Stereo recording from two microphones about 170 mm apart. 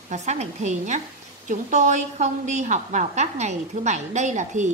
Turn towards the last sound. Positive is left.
turn(degrees=-45)  # may be behind; listen again after turning